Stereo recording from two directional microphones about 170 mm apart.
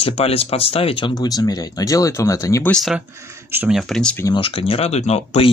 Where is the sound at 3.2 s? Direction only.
15° right (ahead or behind); by 4.2 s 5° left (ahead or behind).